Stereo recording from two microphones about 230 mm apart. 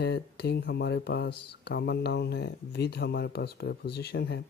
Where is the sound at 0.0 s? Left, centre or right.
Left.